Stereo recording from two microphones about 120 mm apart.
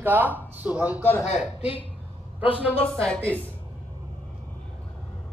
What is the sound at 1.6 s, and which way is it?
Speech, 55° left (ahead or behind).